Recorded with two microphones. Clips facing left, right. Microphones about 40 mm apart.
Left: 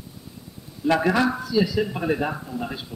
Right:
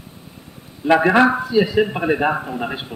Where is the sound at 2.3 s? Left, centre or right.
Right.